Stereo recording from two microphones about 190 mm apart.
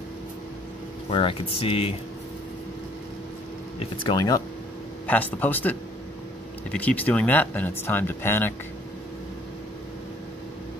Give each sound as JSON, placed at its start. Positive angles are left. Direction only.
{"t": 1.1, "sound": "speech", "side_deg": 30}
{"t": 3.8, "sound": "speech", "side_deg": 25}
{"t": 5.0, "sound": "speech", "side_deg": 10}